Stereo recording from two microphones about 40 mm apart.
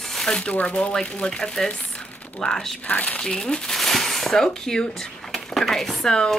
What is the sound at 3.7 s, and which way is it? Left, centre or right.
Shuffling cards, centre.